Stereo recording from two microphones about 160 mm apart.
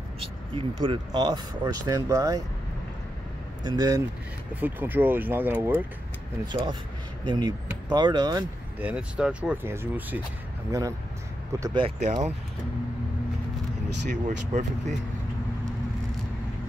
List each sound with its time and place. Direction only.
0.6 s speech: 30° right (ahead or behind)
3.6 s speech: 25° right (ahead or behind)
4.6 s speech: 10° right (ahead or behind)
6.4 s speech: 30° right (ahead or behind)
8.7 s speech: 10° right (ahead or behind)
11.6 s speech: 30° right (ahead or behind)
12.0 s speech: 45° right (ahead or behind)
14.5 s speech: 45° right (ahead or behind)